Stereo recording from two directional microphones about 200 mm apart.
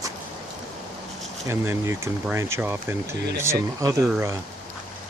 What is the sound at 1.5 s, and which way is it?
Speech, 15° right (ahead or behind).